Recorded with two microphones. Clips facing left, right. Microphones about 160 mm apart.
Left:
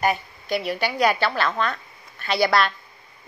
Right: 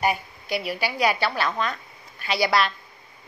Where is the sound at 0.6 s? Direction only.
10° right (ahead or behind).